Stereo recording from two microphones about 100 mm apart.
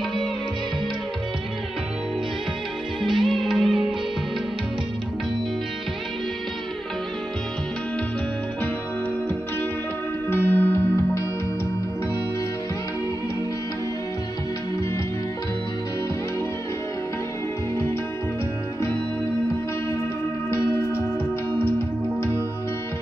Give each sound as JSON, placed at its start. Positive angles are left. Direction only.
{"t": 3.0, "sound": "music", "side_deg": 0}
{"t": 10.3, "sound": "music", "side_deg": 20}
{"t": 20.4, "sound": "music", "side_deg": 25}